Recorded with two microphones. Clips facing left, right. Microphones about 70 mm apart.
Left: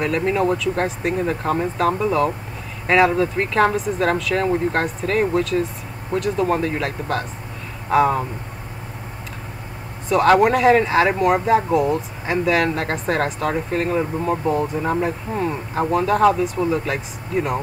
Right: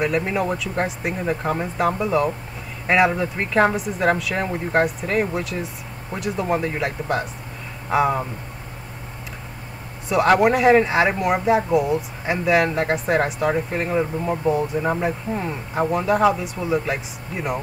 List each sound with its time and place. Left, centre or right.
0.0 s speech: centre
10.0 s speech: centre